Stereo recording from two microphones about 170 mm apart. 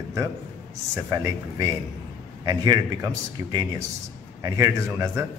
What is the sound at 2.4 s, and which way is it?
Speech, 25° right (ahead or behind).